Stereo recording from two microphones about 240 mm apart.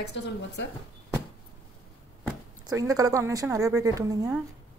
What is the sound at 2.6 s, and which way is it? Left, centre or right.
A woman's voice, centre.